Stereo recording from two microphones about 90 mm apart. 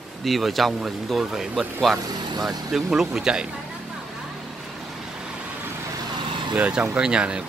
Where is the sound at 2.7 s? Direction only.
5° right (ahead or behind).